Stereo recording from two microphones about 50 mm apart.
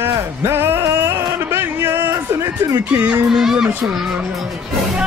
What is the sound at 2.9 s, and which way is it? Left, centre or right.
Speech, right.